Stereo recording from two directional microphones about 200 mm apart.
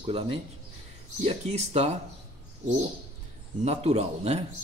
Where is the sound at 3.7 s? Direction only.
30° right (ahead or behind).